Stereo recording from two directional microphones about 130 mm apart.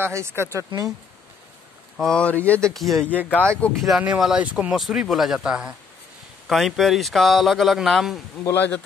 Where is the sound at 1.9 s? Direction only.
5° left (ahead or behind).